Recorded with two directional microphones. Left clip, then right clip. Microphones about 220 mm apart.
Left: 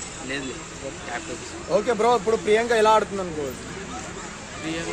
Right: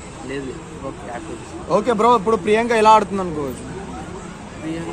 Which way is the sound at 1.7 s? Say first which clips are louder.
Right 5 dB; 45° right (ahead or behind).